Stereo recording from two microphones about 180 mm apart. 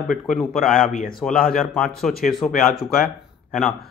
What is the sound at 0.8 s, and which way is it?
Speech, 50° left (ahead or behind).